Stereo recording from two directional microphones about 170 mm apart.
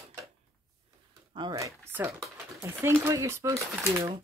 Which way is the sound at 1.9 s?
10° right (ahead or behind).